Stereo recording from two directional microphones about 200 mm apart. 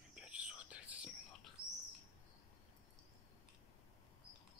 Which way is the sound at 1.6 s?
30° left (ahead or behind).